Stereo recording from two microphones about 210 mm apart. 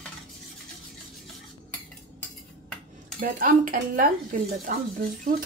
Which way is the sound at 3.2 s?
40° right (ahead or behind).